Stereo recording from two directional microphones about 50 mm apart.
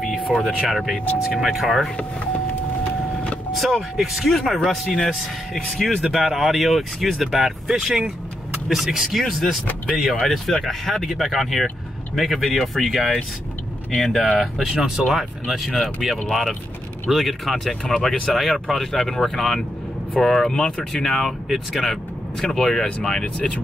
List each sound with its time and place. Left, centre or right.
0.0 s vehicle: centre
0.6 s speech: centre
3.5 s speech: centre
3.9 s speech: centre
6.0 s speech: centre
14.7 s speech: centre
15.0 s speech: centre
23.2 s speech: left